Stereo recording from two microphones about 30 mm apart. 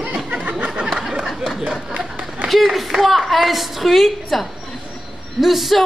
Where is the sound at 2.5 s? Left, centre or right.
Centre.